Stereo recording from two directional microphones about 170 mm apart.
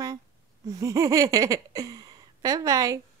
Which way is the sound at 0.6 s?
20° right (ahead or behind).